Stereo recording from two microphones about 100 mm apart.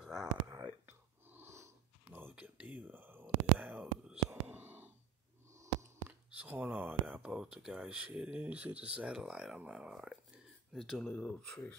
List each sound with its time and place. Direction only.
0.0 s whispering: 5° right (ahead or behind)
0.7 s a sound: 20° right (ahead or behind)
2.0 s whispering: 15° right (ahead or behind)
5.5 s a sound: 30° right (ahead or behind)
6.0 s speech: 15° right (ahead or behind); by 11.1 s centre (ahead or behind)
11.1 s speech: 10° left (ahead or behind)